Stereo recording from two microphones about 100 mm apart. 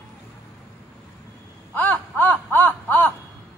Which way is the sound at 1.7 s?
20° left (ahead or behind).